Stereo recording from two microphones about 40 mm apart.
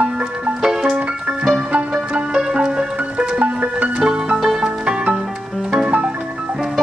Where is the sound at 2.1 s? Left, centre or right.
Right.